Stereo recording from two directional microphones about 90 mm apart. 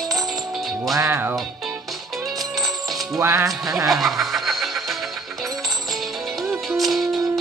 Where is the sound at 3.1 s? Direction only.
30° right (ahead or behind).